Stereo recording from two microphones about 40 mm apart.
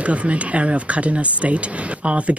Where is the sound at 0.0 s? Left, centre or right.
Right.